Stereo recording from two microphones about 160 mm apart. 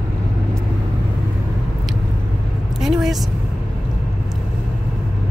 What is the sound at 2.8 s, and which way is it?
Vehicle, centre (ahead or behind).